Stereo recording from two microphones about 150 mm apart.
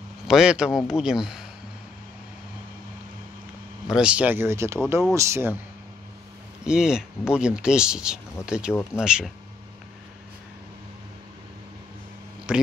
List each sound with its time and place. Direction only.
0.3 s speech: 5° right (ahead or behind)
3.8 s speech: 5° right (ahead or behind)
6.6 s speech: 5° right (ahead or behind)
12.5 s speech: 5° right (ahead or behind)